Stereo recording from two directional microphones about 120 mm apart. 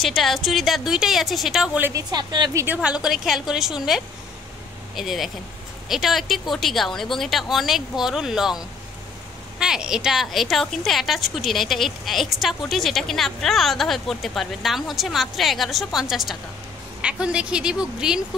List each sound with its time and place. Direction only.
0.0 s a woman's voice: centre (ahead or behind)
1.8 s a woman's voice: 20° right (ahead or behind)
2.0 s a woman's voice: 35° right (ahead or behind)
2.5 s a woman's voice: 15° right (ahead or behind)